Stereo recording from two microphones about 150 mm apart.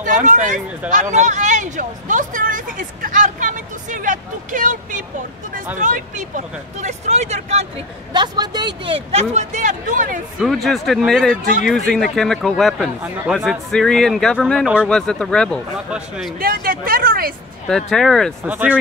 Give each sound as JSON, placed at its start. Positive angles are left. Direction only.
{"t": 0.0, "sound": "speech", "side_deg": -55}
{"t": 8.1, "sound": "speech", "side_deg": -30}
{"t": 10.4, "sound": "speech", "side_deg": 0}
{"t": 16.3, "sound": "speech", "side_deg": -75}
{"t": 17.6, "sound": "speech", "side_deg": 5}
{"t": 18.4, "sound": "speech", "side_deg": -10}